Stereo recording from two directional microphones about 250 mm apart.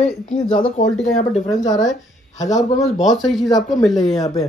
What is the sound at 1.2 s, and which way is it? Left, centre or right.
Speech, centre.